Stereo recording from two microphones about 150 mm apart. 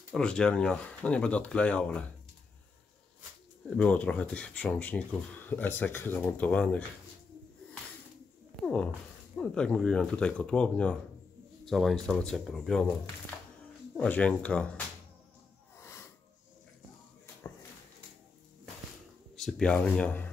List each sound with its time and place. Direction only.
0.1 s speech: 5° left (ahead or behind)
3.7 s speech: 10° left (ahead or behind)
8.6 s speech: 5° left (ahead or behind)
13.9 s speech: 10° left (ahead or behind)
15.8 s snort: 15° left (ahead or behind)
19.3 s speech: centre (ahead or behind)